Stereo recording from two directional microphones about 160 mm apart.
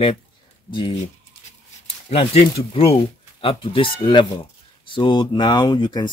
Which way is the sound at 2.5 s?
35° left (ahead or behind).